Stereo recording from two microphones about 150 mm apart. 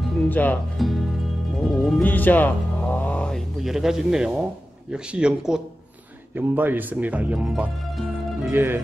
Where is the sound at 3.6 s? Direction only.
5° right (ahead or behind).